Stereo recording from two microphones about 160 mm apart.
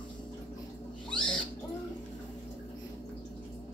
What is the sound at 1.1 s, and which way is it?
Rodents, 5° left (ahead or behind).